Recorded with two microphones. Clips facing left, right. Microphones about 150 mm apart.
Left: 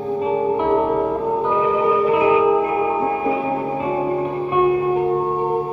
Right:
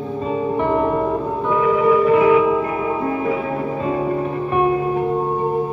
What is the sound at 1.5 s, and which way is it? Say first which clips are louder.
Music: right 5 dB; 20° left (ahead or behind).